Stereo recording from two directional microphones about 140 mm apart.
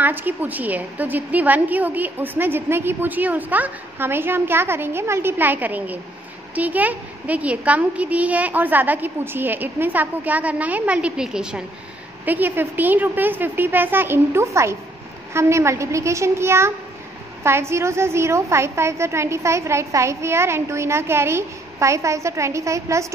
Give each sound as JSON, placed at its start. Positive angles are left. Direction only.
{"t": 0.0, "sound": "a woman's voice", "side_deg": -15}